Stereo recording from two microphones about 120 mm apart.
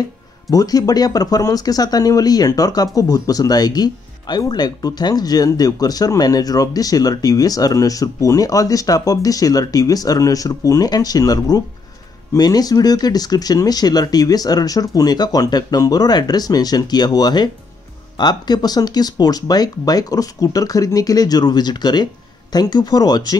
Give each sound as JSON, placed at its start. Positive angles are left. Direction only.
{"t": 0.5, "sound": "speech", "side_deg": 30}